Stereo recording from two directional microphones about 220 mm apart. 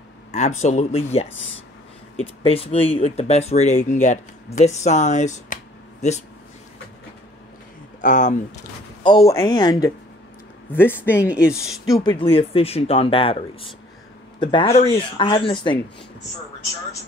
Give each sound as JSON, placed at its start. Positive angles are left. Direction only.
{"t": 0.6, "sound": "speech", "side_deg": 30}
{"t": 8.0, "sound": "speech", "side_deg": 35}
{"t": 9.0, "sound": "speech", "side_deg": 20}
{"t": 11.0, "sound": "speech", "side_deg": -5}
{"t": 12.0, "sound": "speech", "side_deg": 20}